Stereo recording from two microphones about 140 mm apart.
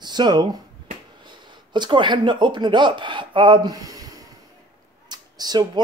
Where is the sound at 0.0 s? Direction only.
30° right (ahead or behind).